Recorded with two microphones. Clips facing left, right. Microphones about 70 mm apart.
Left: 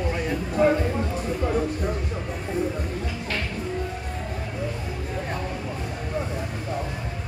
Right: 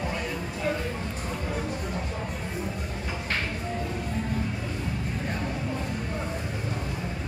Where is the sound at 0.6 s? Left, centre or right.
Left.